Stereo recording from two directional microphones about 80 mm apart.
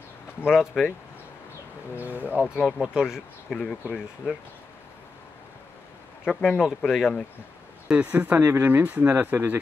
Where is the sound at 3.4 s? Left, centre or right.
Centre.